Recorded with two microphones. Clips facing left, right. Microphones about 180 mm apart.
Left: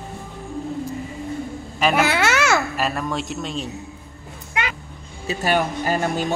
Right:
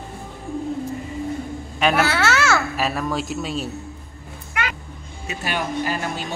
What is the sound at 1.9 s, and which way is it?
Speech, 15° left (ahead or behind).